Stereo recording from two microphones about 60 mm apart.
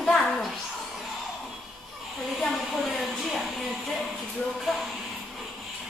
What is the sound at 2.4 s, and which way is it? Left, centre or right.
Speech, centre.